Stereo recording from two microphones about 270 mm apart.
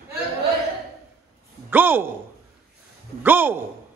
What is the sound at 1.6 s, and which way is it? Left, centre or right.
Speech, centre.